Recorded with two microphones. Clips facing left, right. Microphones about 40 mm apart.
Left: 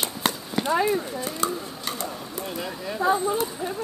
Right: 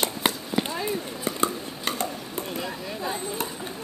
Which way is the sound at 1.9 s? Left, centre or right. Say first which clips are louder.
Right 4 dB; right.